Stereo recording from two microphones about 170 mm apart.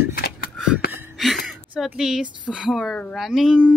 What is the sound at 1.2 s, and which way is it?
A woman's voice, centre (ahead or behind).